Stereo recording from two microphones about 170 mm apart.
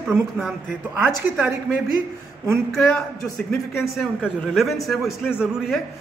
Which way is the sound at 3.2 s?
Centre (ahead or behind).